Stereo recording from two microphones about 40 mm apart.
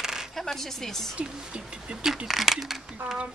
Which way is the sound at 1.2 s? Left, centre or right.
Right.